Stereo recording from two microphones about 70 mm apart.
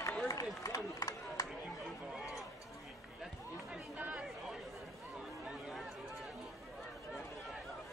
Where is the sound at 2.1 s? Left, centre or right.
Centre.